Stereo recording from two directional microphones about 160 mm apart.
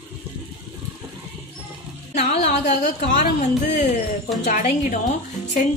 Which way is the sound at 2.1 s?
50° left (ahead or behind).